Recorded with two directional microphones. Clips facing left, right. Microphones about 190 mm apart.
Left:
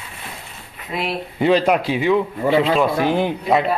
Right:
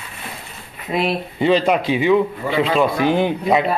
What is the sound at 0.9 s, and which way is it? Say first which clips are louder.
Speech: right 5 dB; 20° right (ahead or behind).